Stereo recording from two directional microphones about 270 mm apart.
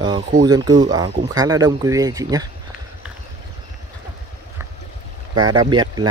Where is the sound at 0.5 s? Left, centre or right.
Centre.